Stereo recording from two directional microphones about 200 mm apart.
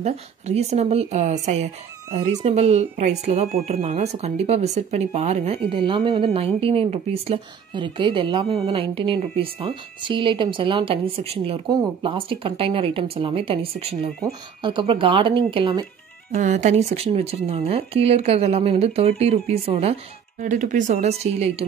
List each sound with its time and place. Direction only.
0.0 s a woman's voice: 35° right (ahead or behind)
16.3 s speech: 35° right (ahead or behind)